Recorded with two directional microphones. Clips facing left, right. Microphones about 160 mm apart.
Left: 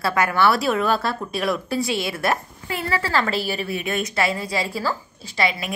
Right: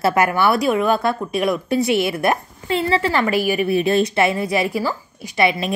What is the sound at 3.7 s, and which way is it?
A woman's voice, 30° right (ahead or behind).